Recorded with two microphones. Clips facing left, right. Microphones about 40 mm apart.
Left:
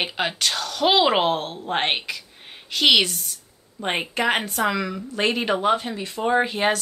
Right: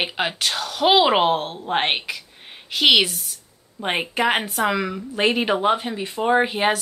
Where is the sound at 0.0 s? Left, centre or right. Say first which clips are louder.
Right 1 dB; centre.